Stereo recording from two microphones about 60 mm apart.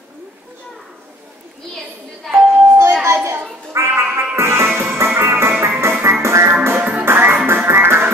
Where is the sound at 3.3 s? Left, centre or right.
Right.